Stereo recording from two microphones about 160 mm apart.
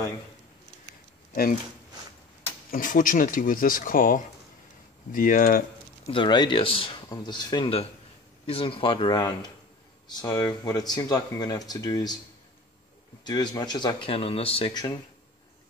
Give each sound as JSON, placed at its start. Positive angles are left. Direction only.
{"t": 1.3, "sound": "speech", "side_deg": 65}
{"t": 2.7, "sound": "speech", "side_deg": 55}
{"t": 6.0, "sound": "speech", "side_deg": 30}
{"t": 13.2, "sound": "speech", "side_deg": 25}